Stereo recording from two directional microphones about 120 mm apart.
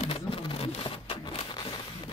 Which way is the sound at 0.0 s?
50° left (ahead or behind).